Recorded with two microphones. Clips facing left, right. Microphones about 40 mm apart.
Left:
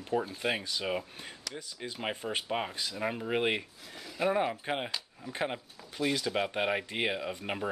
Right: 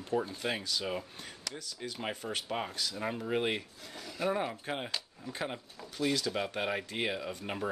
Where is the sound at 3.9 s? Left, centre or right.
Centre.